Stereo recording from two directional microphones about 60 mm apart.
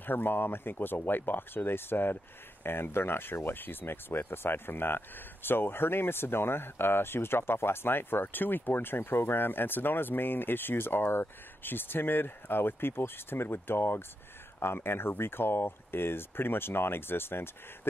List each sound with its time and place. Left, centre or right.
0.0 s speech: left